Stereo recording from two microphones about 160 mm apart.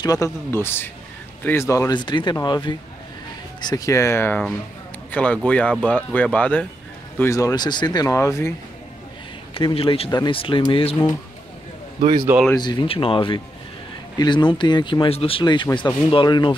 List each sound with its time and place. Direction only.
0.0 s speech: 20° left (ahead or behind)
7.2 s speech: 20° left (ahead or behind)
9.5 s speech: 35° left (ahead or behind)
12.5 s speech: 30° left (ahead or behind)